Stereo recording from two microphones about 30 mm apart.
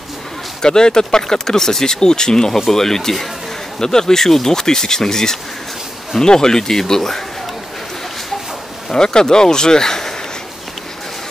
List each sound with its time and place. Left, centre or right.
0.6 s speech: left
8.9 s speech: left